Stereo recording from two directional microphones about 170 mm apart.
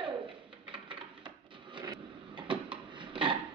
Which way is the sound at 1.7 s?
25° right (ahead or behind).